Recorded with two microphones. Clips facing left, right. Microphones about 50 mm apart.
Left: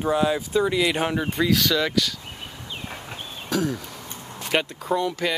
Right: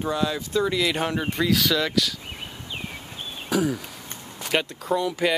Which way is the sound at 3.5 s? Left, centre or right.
Centre.